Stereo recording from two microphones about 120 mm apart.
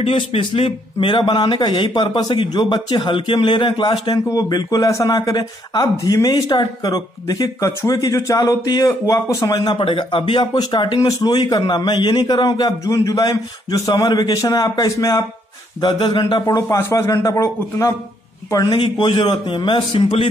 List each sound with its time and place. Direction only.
0.0 s speech: 55° left (ahead or behind)
16.4 s a man's voice: 25° left (ahead or behind)
18.5 s a man's voice: 40° left (ahead or behind)